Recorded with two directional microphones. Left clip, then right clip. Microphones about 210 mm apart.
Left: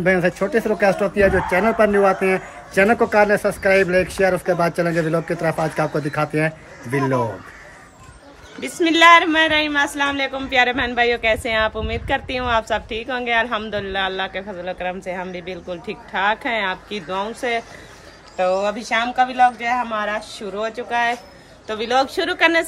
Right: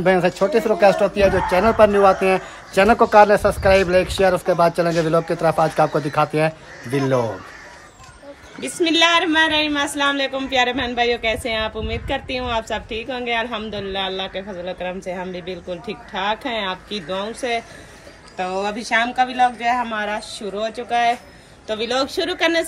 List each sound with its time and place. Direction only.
0.0 s speech: 15° right (ahead or behind)
9.3 s speech: 35° left (ahead or behind)
9.9 s speech: centre (ahead or behind)
18.4 s speech: 5° left (ahead or behind)